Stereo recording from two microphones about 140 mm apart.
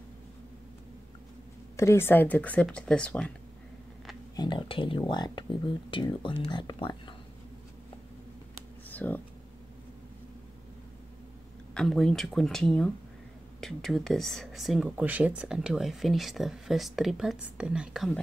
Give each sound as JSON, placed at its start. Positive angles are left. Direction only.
{"t": 1.8, "sound": "speech", "side_deg": 20}
{"t": 4.4, "sound": "speech", "side_deg": 35}
{"t": 8.9, "sound": "speech", "side_deg": 10}
{"t": 11.7, "sound": "speech", "side_deg": 5}